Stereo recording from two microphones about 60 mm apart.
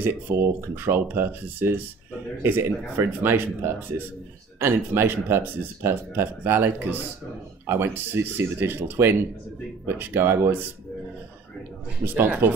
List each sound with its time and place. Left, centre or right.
0.0 s speech: right
12.0 s speech: right